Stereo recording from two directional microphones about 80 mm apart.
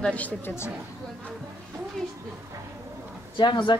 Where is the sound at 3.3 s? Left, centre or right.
Left.